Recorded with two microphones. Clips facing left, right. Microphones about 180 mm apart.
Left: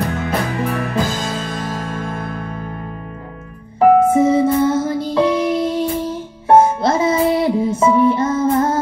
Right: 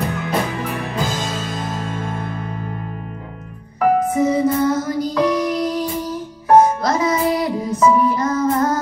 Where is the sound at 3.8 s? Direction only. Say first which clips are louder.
Left 5 dB; 25° left (ahead or behind).